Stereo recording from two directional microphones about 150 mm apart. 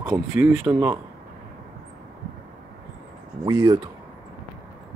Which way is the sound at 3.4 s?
30° right (ahead or behind).